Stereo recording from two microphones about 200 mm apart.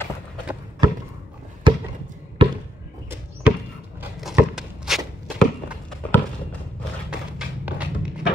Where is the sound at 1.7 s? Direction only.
25° right (ahead or behind).